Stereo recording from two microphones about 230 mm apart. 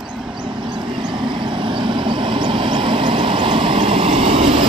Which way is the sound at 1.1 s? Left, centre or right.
Right.